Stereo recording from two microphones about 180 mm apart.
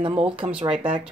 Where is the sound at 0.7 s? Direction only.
5° right (ahead or behind).